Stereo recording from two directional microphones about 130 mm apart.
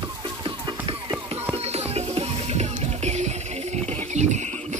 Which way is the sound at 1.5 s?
55° right (ahead or behind).